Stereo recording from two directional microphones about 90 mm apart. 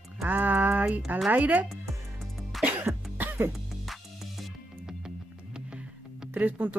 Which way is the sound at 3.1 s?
25° right (ahead or behind).